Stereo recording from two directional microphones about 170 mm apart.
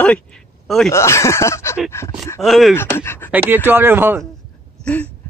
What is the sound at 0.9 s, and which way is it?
Speech, 15° left (ahead or behind).